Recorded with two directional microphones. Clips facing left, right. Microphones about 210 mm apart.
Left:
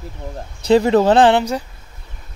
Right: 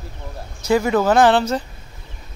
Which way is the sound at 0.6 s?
30° left (ahead or behind).